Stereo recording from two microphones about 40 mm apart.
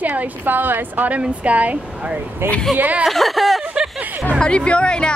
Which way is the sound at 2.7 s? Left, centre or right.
Right.